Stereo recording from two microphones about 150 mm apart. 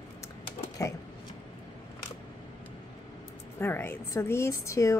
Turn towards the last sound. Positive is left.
turn(degrees=20)  # may be behind; listen again after turning